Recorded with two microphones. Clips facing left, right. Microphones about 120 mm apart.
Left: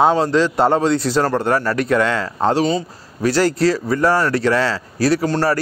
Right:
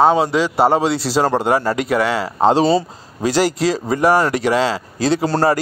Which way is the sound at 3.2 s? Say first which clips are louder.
Left 1 dB; 15° right (ahead or behind).